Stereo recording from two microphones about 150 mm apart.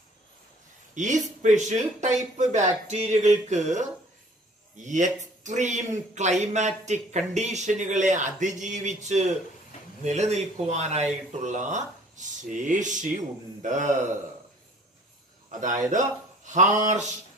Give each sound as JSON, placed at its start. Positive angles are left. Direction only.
{"t": 0.9, "sound": "a man's voice", "side_deg": -55}
{"t": 15.6, "sound": "speech", "side_deg": -55}